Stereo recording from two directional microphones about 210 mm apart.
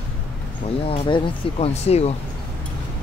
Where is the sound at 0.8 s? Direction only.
25° left (ahead or behind).